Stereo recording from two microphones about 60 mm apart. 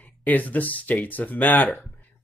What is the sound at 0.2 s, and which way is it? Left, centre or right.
Speech, left.